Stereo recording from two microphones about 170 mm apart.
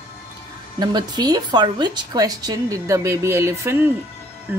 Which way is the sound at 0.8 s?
25° right (ahead or behind).